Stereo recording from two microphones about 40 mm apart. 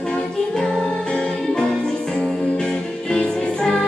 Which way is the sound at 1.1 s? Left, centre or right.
Left.